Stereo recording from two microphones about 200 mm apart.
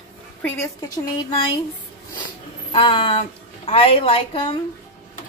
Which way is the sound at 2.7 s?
25° left (ahead or behind).